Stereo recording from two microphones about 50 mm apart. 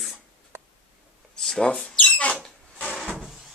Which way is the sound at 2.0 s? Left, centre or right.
Left.